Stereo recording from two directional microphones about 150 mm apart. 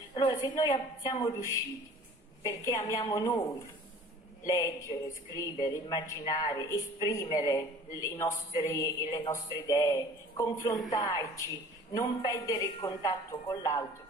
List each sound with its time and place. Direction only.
0.1 s a sound: 30° left (ahead or behind)
0.4 s a woman's voice: 25° left (ahead or behind)
4.5 s a woman's voice: 20° left (ahead or behind)